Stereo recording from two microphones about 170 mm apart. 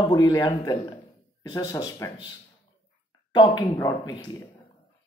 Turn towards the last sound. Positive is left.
turn(degrees=15)  # may be behind; listen again after turning